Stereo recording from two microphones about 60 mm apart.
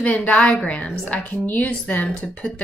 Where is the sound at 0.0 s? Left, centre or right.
Left.